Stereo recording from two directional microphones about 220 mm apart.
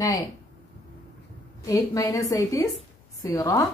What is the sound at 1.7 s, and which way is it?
Speech, 15° left (ahead or behind).